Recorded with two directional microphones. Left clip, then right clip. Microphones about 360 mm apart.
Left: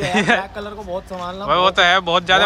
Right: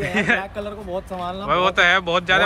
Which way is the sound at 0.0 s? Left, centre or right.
Centre.